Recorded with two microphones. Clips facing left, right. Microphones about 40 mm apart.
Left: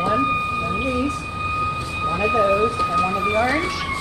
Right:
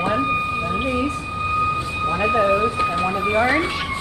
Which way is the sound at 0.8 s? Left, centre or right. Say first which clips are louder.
Right 1 dB; centre.